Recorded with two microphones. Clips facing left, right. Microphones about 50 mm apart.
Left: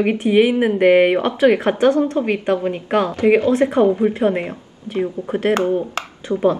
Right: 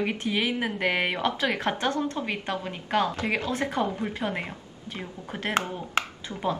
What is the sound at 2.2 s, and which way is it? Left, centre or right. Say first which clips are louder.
A woman's voice: left 12 dB; left.